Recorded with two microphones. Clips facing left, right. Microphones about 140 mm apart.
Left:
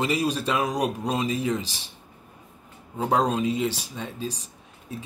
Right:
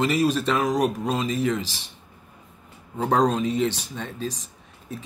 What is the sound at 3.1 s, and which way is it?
Speech, 10° left (ahead or behind).